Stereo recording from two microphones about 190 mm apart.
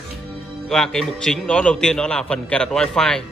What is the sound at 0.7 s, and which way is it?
A man's voice, 5° left (ahead or behind).